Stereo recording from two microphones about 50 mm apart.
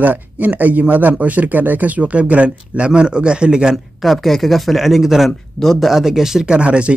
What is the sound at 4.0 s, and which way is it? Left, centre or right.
Speech, centre.